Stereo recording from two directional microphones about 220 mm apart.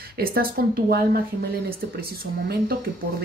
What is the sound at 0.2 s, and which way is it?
Speech, 40° right (ahead or behind).